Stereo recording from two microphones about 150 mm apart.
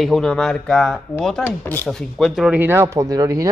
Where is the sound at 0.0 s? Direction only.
Centre (ahead or behind).